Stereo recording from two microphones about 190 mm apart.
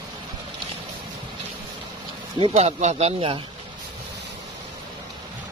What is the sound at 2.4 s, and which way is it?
Speech, 30° right (ahead or behind).